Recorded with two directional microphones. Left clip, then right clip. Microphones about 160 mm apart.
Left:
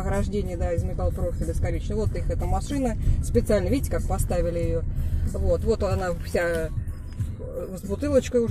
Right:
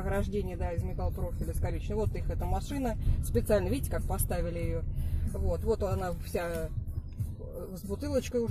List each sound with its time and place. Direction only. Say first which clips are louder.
0.0 s speech: left 5 dB; 35° right (ahead or behind)
8.0 s speech: left 10 dB; 40° right (ahead or behind)